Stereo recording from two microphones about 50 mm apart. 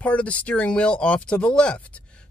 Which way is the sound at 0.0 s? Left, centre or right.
Left.